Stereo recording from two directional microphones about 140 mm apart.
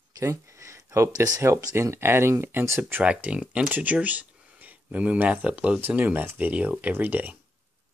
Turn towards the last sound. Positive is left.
turn(degrees=-10)  # may be behind; listen again after turning